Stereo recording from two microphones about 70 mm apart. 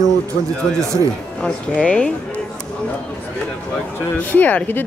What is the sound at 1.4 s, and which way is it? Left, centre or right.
Speech, centre.